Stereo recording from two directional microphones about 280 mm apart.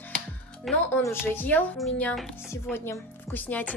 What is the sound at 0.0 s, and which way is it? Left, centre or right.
A woman's voice, centre.